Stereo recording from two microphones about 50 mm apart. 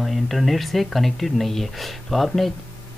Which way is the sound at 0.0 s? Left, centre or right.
Centre.